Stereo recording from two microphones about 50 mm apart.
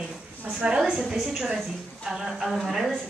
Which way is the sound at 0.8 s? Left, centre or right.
Centre.